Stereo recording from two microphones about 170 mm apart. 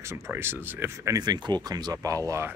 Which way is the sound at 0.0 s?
15° right (ahead or behind).